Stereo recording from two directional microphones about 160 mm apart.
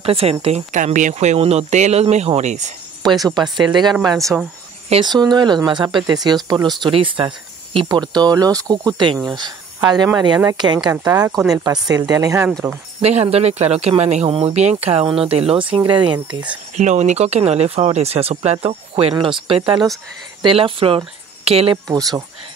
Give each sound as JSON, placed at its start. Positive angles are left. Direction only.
{"t": 0.0, "sound": "speech", "side_deg": -35}
{"t": 3.0, "sound": "speech", "side_deg": -25}
{"t": 4.2, "sound": "speech", "side_deg": 5}
{"t": 5.0, "sound": "speech", "side_deg": -25}
{"t": 13.0, "sound": "speech", "side_deg": -40}
{"t": 16.7, "sound": "speech", "side_deg": -45}
{"t": 21.8, "sound": "speech", "side_deg": -20}